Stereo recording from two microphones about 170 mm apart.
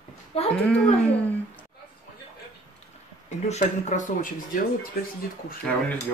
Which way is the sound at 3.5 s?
40° left (ahead or behind).